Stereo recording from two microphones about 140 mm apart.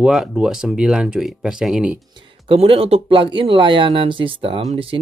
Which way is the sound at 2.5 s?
45° right (ahead or behind).